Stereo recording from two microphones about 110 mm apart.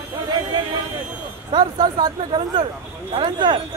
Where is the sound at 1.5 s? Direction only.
40° right (ahead or behind).